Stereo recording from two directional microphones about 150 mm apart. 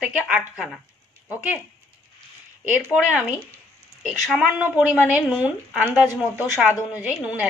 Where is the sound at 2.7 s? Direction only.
10° right (ahead or behind).